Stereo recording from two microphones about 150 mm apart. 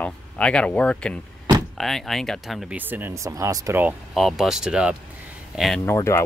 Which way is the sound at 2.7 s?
15° right (ahead or behind).